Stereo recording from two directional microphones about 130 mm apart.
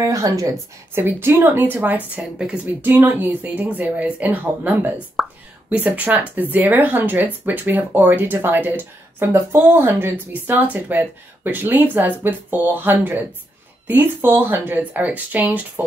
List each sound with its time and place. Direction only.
0.0 s a woman's voice: 25° right (ahead or behind)
1.0 s speech: 15° right (ahead or behind)
5.2 s whispering: centre (ahead or behind)
5.7 s speech: 10° right (ahead or behind)